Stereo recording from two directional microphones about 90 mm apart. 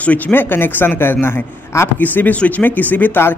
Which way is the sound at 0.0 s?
20° left (ahead or behind).